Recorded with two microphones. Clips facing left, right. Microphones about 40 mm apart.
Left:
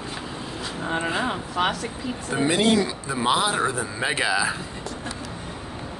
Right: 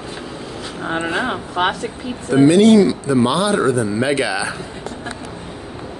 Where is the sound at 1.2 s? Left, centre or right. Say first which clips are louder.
Right 5 dB; right.